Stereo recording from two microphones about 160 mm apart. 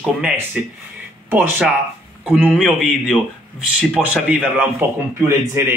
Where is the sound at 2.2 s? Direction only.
5° right (ahead or behind).